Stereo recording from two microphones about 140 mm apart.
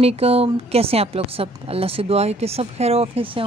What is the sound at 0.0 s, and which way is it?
A woman's voice, 45° right (ahead or behind).